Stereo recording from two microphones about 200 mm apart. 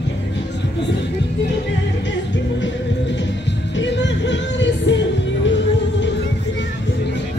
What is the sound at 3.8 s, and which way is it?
Music, 65° left (ahead or behind).